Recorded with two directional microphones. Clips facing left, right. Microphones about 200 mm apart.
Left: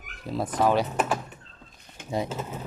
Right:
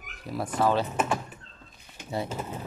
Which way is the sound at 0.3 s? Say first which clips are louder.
Left 2 dB; 20° left (ahead or behind).